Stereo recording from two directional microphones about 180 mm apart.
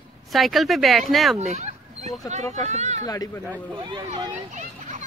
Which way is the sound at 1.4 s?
40° right (ahead or behind).